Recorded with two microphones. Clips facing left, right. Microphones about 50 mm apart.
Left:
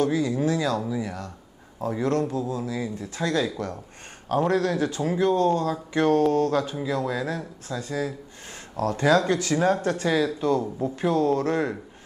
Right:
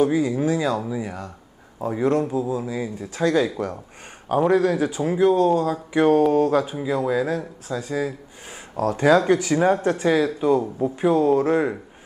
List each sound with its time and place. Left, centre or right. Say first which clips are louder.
0.0 s speech: right 3 dB; centre